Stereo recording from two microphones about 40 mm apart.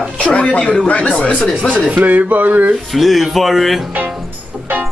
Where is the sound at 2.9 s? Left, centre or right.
Centre.